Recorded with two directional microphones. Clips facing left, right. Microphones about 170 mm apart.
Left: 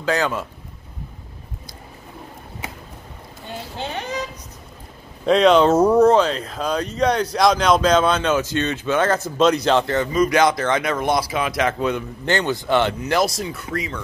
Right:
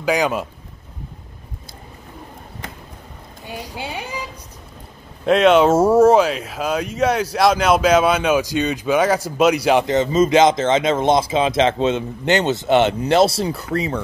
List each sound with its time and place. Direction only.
0.0 s speech: 15° right (ahead or behind)
3.4 s speech: 15° right (ahead or behind); by 14.0 s 35° right (ahead or behind)